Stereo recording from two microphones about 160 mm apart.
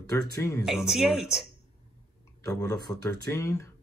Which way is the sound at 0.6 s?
5° right (ahead or behind).